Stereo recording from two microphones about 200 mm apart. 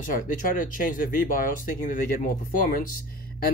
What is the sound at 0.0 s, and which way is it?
Speech, 40° left (ahead or behind).